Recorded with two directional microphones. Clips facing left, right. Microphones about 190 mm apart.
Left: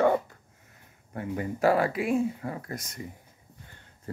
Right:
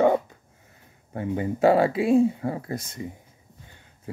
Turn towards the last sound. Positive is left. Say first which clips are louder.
# right 6 dB
turn(degrees=-25)  # may be behind; listen again after turning